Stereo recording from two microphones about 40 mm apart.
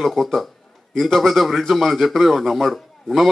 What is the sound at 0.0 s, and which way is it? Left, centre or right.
A man's voice, centre.